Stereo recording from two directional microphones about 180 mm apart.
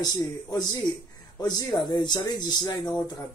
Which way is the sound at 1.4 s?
20° left (ahead or behind).